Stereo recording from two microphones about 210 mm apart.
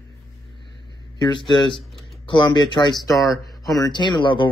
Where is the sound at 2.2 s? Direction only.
20° left (ahead or behind).